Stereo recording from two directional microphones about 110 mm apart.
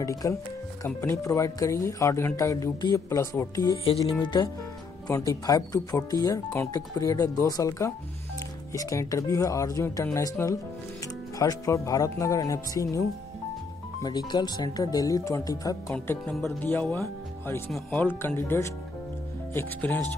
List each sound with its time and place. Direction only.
0.0 s speech: 30° left (ahead or behind)
14.0 s speech: 40° left (ahead or behind)
15.9 s speech: 15° left (ahead or behind)